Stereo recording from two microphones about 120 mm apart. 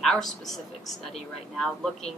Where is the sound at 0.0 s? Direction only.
5° left (ahead or behind).